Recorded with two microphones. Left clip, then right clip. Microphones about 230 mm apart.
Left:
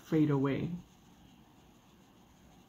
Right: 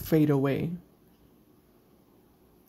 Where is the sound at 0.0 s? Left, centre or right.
Right.